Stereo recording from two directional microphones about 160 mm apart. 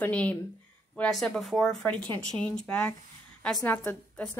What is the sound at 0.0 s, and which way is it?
A woman's voice, 10° left (ahead or behind).